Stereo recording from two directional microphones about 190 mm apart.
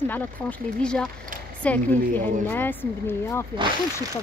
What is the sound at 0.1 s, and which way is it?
Speech, 5° left (ahead or behind).